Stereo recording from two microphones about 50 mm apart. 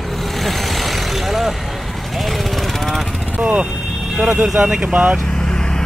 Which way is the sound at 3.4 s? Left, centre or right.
Right.